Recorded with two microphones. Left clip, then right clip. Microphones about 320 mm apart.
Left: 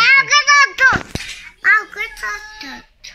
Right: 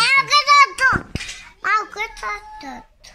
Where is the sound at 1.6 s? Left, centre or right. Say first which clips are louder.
Left 6 dB; centre.